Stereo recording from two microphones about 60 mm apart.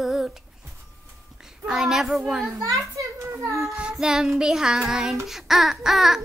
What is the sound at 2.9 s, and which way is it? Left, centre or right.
Child singing, right.